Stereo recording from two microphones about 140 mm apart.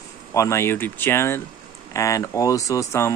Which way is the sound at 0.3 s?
20° left (ahead or behind).